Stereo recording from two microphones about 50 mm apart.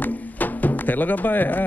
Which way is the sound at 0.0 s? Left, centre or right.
Left.